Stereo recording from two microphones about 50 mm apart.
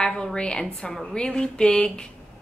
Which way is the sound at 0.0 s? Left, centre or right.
Centre.